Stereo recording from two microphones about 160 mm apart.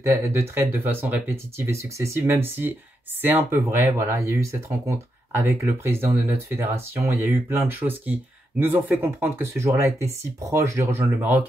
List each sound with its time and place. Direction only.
0.0 s speech: 15° right (ahead or behind)